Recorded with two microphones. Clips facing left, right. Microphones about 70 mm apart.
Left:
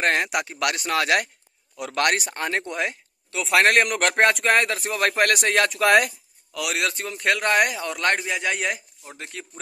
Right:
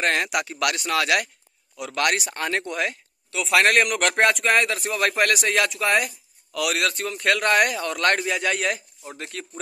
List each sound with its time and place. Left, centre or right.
0.0 s a man's voice: left
1.8 s speech: left
2.3 s a man's voice: left
5.8 s speech: left
6.5 s a man's voice: left